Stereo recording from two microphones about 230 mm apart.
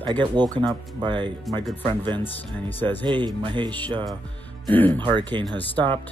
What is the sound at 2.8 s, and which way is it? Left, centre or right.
Speech, centre.